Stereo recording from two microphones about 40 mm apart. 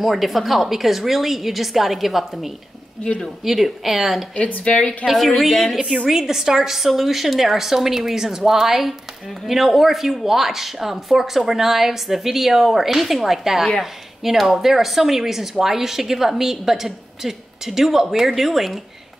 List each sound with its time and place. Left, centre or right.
0.0 s a woman's voice: centre
4.4 s speech: left
5.0 s a woman's voice: centre